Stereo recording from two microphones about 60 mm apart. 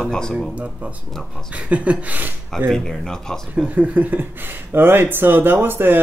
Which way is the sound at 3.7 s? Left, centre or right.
Right.